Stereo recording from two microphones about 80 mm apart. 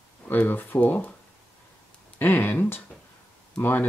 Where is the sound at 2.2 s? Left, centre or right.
Left.